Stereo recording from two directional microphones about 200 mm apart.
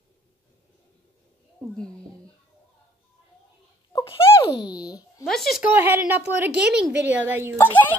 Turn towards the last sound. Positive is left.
turn(degrees=10)  # may be behind; listen again after turning